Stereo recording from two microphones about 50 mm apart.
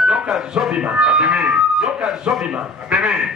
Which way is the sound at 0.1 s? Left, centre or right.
Centre.